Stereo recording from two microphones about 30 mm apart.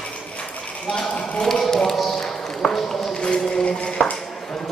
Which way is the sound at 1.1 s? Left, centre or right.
Left.